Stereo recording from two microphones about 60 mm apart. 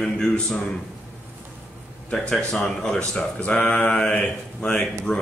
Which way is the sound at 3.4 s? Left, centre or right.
Centre.